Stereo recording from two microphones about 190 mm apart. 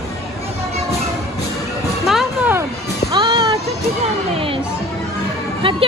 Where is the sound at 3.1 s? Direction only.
25° right (ahead or behind).